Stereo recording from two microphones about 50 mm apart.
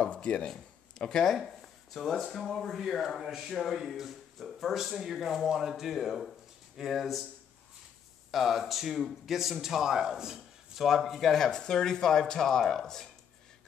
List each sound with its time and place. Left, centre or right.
0.0 s speech: left
0.5 s speech: centre
8.3 s speech: centre